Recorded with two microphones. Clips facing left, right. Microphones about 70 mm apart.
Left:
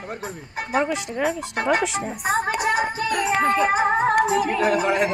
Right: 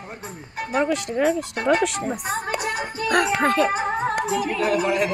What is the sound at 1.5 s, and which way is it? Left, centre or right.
Speech, centre.